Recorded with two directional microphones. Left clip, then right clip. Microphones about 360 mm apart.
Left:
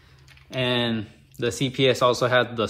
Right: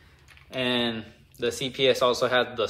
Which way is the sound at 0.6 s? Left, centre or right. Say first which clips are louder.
Left 2 dB; centre.